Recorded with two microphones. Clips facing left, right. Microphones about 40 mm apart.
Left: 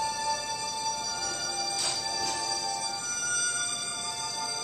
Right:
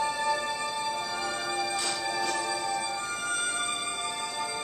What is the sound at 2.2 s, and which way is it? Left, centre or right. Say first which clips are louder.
Music: right 3 dB; right.